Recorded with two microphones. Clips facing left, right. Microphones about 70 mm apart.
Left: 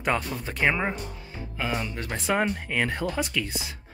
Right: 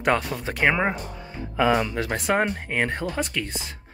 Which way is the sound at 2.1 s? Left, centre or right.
Right.